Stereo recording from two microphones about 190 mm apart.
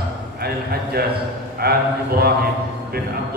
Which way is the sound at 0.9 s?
55° right (ahead or behind).